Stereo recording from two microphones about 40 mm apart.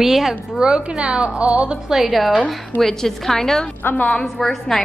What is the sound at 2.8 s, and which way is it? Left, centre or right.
A woman's voice, centre.